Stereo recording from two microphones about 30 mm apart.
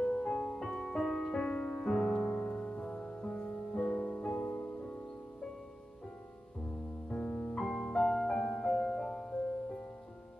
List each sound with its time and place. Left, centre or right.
0.0 s music: left
0.3 s music: left
1.6 s music: left
1.9 s music: centre
2.3 s music: left
7.1 s music: left
7.6 s piano: centre
8.0 s music: left